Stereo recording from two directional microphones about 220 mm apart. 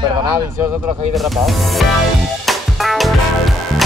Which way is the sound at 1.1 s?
Centre (ahead or behind).